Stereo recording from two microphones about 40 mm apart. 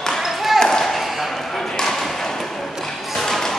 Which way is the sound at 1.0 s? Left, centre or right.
Centre.